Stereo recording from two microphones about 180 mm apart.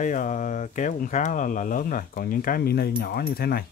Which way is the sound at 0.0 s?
45° left (ahead or behind).